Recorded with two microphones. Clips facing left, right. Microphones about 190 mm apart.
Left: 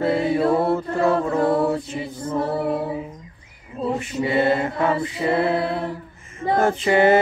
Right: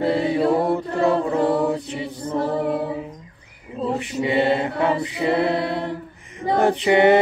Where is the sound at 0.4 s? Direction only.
15° right (ahead or behind).